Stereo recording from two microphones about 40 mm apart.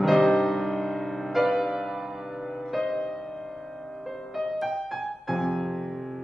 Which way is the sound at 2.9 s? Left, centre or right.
Centre.